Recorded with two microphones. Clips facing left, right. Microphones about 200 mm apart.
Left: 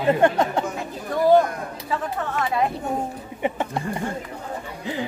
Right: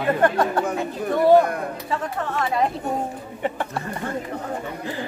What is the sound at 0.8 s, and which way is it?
Speech, centre (ahead or behind).